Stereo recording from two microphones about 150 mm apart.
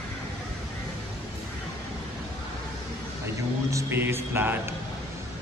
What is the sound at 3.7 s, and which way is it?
A man's voice, 20° right (ahead or behind).